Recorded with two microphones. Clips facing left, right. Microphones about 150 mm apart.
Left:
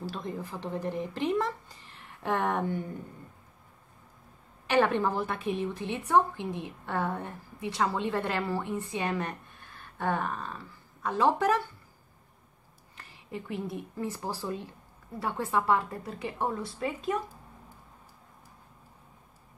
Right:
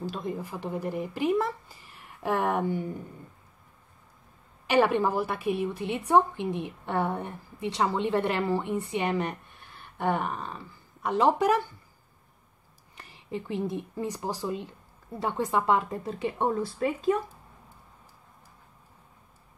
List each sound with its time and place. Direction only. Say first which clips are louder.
0.0 s a woman's voice: right 3 dB; 15° right (ahead or behind)
4.6 s a woman's voice: right 2 dB; 15° right (ahead or behind)
12.9 s a woman's voice: right 4 dB; 20° right (ahead or behind)